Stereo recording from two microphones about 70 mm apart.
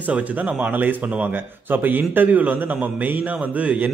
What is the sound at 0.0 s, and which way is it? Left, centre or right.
A man's voice, right.